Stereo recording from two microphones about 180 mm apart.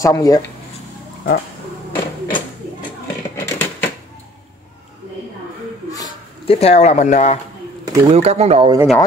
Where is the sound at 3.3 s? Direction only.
10° left (ahead or behind).